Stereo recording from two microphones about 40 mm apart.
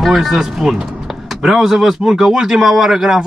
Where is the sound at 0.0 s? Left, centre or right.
Centre.